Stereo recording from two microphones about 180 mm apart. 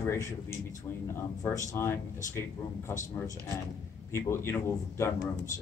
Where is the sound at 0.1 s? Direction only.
15° left (ahead or behind).